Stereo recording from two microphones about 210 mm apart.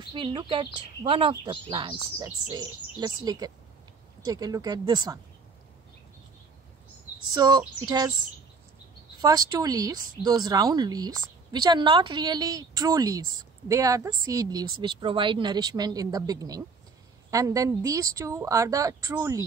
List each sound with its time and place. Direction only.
0.0 s speech: 25° right (ahead or behind)
7.3 s speech: 20° right (ahead or behind)
9.2 s speech: 15° right (ahead or behind)